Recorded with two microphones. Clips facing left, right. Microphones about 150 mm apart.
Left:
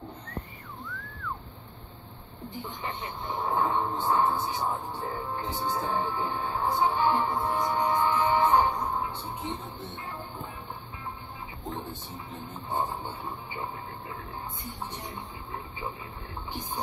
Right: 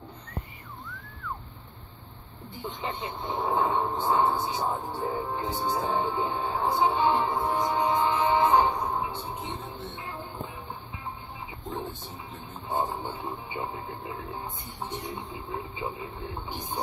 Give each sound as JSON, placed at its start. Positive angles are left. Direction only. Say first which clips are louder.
{"t": 2.6, "sound": "speech", "louder": "right 4 dB", "side_deg": -20}
{"t": 12.6, "sound": "speech", "louder": "right 2 dB", "side_deg": -20}
{"t": 15.1, "sound": "speech", "louder": "right 3 dB", "side_deg": -20}